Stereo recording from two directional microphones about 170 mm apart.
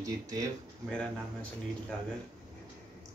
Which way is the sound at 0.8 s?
5° left (ahead or behind).